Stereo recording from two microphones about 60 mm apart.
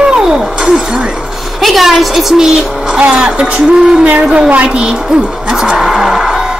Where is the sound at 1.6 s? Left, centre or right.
Centre.